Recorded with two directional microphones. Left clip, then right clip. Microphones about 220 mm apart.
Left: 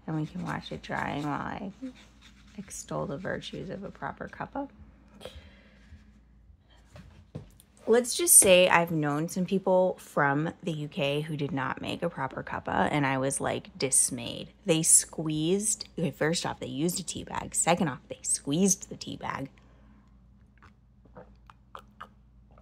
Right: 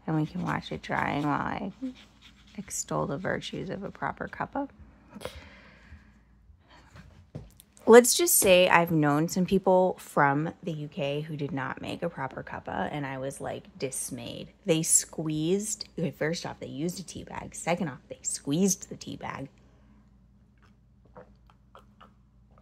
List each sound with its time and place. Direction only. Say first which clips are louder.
0.0 s speech: right 4 dB; 10° right (ahead or behind)
5.1 s a sound: right 5 dB; 25° right (ahead or behind)
7.8 s speech: right 8 dB; 25° right (ahead or behind)
8.2 s a woman's voice: even; 5° right (ahead or behind)
21.5 s chewing: left 7 dB; 30° left (ahead or behind)